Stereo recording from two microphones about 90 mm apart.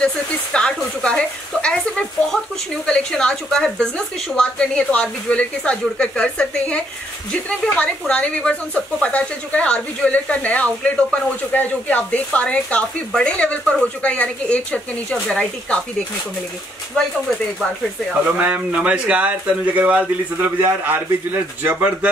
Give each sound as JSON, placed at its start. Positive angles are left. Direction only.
{"t": 0.0, "sound": "speech", "side_deg": 10}
{"t": 18.2, "sound": "speech", "side_deg": -15}